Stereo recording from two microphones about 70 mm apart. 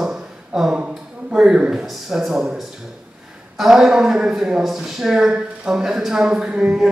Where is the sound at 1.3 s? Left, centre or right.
Centre.